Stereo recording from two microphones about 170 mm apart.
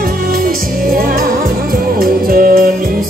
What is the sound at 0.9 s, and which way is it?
Music, 60° right (ahead or behind).